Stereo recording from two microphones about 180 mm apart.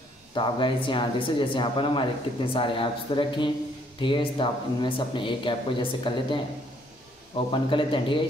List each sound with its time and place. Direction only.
0.3 s speech: 25° left (ahead or behind)